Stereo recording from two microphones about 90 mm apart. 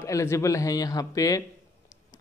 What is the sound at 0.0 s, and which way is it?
Speech, 35° left (ahead or behind).